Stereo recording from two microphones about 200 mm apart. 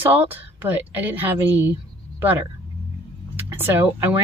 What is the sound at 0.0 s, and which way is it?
A woman's voice, 10° right (ahead or behind).